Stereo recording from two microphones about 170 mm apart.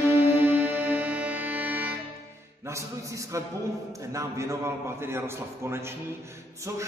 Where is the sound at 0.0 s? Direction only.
10° right (ahead or behind).